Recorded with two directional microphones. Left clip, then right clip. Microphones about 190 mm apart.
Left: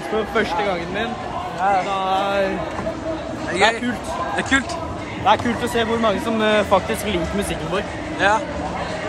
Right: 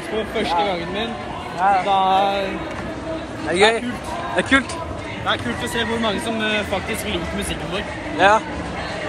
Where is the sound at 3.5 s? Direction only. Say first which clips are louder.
Right 2 dB; centre (ahead or behind).